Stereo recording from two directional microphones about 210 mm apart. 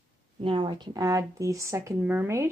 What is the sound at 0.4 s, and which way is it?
Speech, 25° right (ahead or behind).